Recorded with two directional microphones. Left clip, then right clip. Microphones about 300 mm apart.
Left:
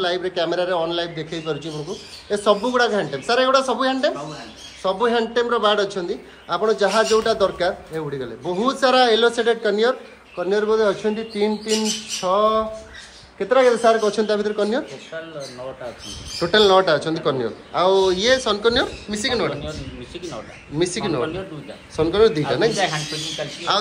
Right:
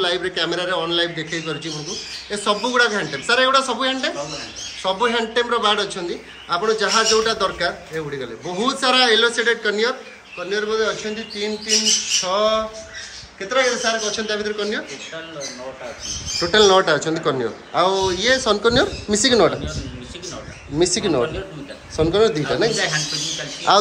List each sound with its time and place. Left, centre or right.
0.0 s a man's voice: centre
12.2 s a man's voice: centre
13.5 s speech: centre
16.3 s a man's voice: centre
20.7 s a man's voice: centre